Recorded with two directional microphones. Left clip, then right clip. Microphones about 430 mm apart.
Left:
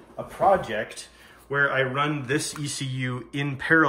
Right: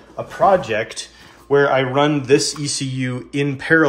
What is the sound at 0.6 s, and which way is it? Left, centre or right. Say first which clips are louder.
Speech: right 8 dB; right.